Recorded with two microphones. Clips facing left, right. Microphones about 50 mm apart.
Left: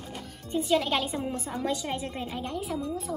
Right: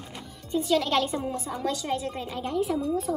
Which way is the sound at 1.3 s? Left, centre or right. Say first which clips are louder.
Right 1 dB; left.